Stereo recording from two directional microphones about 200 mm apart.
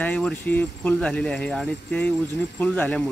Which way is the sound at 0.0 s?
5° left (ahead or behind).